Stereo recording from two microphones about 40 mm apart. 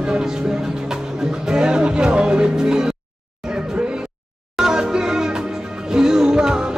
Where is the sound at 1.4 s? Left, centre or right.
Centre.